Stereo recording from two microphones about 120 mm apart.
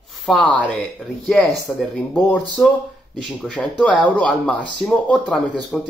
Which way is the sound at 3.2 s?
Centre (ahead or behind).